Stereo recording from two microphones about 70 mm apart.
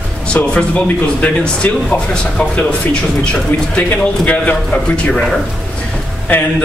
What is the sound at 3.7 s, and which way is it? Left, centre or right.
A man's voice, centre.